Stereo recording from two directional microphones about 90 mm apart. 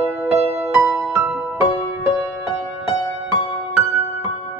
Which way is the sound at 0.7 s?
25° right (ahead or behind).